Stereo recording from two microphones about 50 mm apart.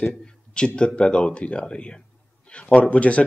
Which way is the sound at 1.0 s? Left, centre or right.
Left.